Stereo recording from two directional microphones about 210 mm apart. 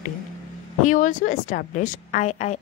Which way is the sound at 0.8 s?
40° left (ahead or behind).